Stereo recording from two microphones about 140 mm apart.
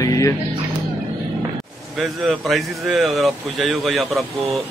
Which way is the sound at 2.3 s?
Centre (ahead or behind).